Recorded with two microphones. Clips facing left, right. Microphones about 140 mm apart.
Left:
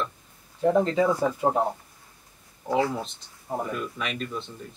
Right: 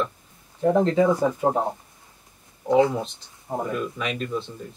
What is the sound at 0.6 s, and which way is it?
A man's voice, 15° right (ahead or behind).